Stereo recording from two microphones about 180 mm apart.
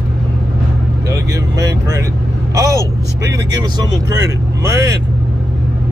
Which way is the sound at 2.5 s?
20° right (ahead or behind).